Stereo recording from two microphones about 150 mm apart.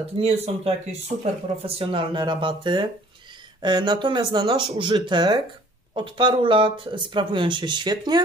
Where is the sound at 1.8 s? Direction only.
35° right (ahead or behind).